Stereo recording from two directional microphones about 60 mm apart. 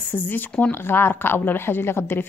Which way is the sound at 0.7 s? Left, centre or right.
Left.